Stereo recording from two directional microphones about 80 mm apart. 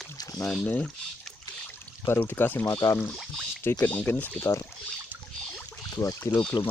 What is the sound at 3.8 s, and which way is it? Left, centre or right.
Speech, left.